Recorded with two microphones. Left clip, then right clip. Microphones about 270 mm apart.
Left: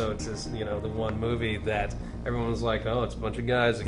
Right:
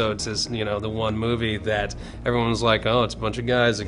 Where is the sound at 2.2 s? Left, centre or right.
Right.